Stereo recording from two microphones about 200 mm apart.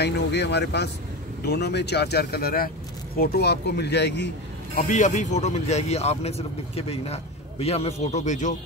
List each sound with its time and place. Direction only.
0.0 s speech: 55° left (ahead or behind)
4.7 s speech: 40° left (ahead or behind)